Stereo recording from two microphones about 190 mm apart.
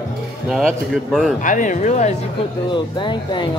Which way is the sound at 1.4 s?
45° left (ahead or behind).